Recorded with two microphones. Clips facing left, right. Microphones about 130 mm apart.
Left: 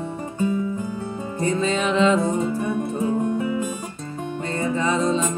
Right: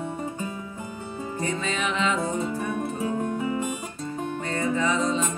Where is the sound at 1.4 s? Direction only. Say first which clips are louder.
Left 7 dB; 30° left (ahead or behind).